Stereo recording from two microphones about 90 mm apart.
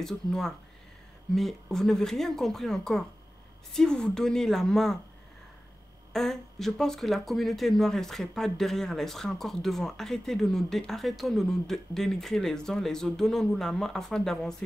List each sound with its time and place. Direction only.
0.0 s speech: 5° left (ahead or behind)
6.1 s speech: 5° left (ahead or behind)